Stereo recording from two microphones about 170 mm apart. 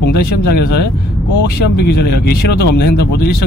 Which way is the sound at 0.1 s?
70° left (ahead or behind).